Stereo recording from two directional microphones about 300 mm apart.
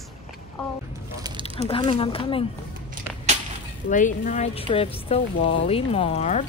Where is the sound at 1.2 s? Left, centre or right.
Centre.